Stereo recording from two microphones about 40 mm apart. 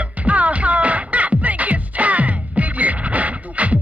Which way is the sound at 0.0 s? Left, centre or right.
Right.